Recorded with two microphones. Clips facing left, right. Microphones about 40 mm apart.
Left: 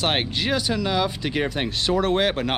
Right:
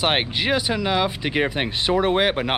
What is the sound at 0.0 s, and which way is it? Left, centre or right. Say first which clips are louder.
Speech: right 2 dB; centre.